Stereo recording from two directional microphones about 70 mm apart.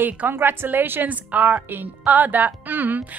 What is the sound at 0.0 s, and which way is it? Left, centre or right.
A woman's voice, right.